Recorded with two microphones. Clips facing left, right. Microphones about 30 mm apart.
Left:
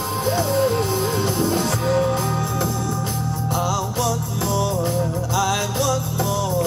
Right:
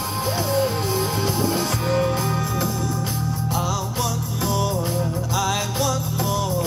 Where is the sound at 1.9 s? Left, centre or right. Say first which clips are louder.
Left 2 dB; centre.